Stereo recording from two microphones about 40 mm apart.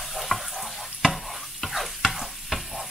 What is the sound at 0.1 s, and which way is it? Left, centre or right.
Stir, centre.